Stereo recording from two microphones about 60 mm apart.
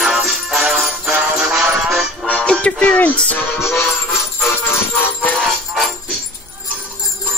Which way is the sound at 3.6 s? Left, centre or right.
Left.